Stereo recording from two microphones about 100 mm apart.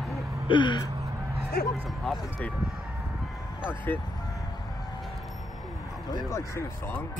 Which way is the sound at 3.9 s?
20° left (ahead or behind).